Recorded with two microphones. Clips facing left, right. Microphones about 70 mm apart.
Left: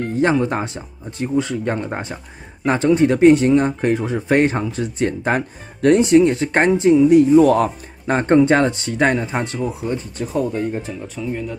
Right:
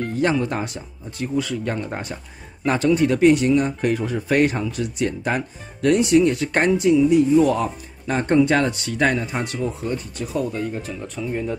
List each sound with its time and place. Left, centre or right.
0.1 s speech: left
7.1 s speech: left
8.1 s speech: left
9.6 s speech: centre
10.1 s speech: left
11.2 s speech: centre